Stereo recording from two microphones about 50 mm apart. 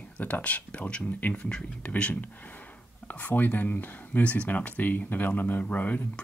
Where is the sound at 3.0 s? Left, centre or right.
Left.